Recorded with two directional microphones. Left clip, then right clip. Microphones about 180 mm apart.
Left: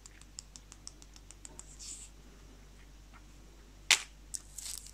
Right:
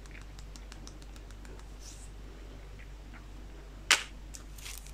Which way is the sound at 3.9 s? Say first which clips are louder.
Right 1 dB; 15° left (ahead or behind).